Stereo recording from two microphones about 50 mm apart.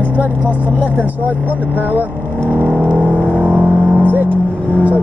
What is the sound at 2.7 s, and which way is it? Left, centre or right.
Vehicle, left.